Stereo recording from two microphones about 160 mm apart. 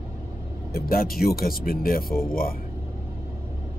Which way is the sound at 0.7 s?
70° left (ahead or behind).